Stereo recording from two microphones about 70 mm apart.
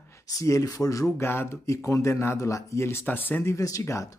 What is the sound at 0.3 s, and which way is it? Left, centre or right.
Speech, left.